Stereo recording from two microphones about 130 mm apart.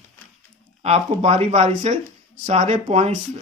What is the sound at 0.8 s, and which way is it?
Speech, 55° right (ahead or behind).